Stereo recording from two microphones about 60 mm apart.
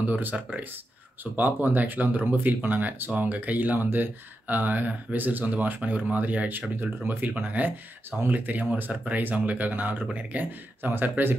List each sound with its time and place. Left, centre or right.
0.1 s speech: right